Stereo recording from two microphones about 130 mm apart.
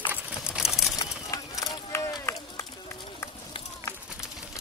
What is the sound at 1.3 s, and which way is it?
Run, 25° left (ahead or behind).